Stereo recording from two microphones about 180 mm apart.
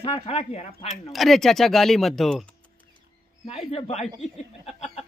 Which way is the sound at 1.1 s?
Centre (ahead or behind).